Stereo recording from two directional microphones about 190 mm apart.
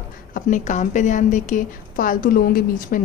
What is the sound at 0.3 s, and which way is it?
A woman's voice, 40° left (ahead or behind).